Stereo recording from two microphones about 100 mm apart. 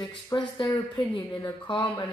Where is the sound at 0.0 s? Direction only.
50° left (ahead or behind).